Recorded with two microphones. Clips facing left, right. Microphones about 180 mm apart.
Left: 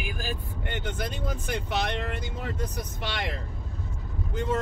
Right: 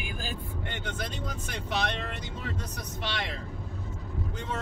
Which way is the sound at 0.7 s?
55° left (ahead or behind).